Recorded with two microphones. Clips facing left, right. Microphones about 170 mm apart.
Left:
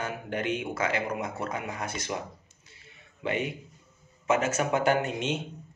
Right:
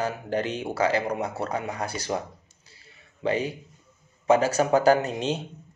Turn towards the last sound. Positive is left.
turn(degrees=-35)  # may be behind; listen again after turning